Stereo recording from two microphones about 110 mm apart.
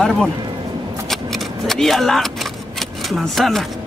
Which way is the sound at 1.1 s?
Centre (ahead or behind).